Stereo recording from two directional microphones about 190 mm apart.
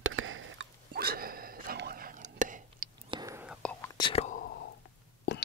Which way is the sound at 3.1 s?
20° right (ahead or behind).